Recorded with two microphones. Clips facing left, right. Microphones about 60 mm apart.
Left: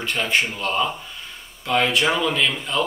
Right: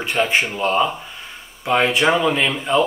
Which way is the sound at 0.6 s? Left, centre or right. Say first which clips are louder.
Right 5 dB; right.